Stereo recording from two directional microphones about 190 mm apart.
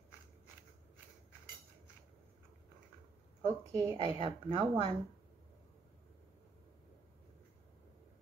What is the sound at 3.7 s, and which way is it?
A woman's voice, 20° right (ahead or behind).